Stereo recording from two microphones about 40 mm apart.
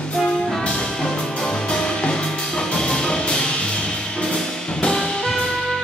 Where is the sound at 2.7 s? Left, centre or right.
Centre.